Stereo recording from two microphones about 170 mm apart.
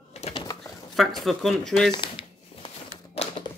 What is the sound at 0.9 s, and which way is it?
Speech, centre (ahead or behind).